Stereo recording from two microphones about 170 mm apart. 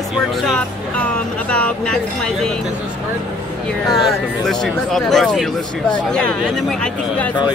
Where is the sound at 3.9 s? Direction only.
Centre (ahead or behind).